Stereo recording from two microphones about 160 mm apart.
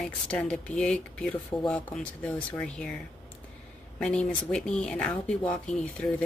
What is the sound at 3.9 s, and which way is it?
Speech, 5° left (ahead or behind).